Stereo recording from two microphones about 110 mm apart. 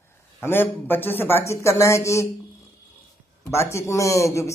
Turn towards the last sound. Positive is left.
turn(degrees=25)  # may be behind; listen again after turning